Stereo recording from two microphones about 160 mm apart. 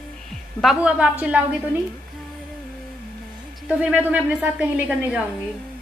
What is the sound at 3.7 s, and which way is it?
A woman's voice, 10° right (ahead or behind).